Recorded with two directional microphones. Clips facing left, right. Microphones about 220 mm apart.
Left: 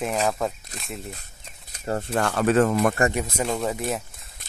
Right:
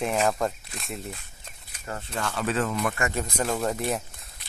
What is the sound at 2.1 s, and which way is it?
Speech, 55° left (ahead or behind).